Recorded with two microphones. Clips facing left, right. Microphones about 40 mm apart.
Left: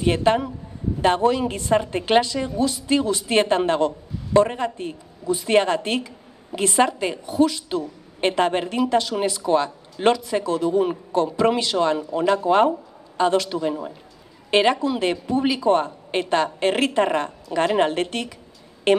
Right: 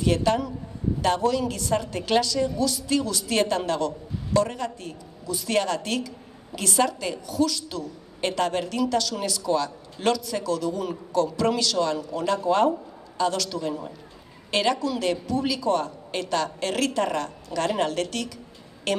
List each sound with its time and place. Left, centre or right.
0.0 s a woman's voice: left